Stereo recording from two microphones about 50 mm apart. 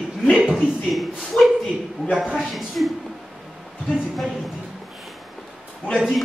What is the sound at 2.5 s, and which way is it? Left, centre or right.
Speech, centre.